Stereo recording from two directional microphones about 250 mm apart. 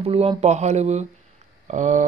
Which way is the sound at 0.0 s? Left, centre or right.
Right.